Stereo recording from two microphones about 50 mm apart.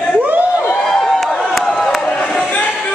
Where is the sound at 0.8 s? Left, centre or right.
Centre.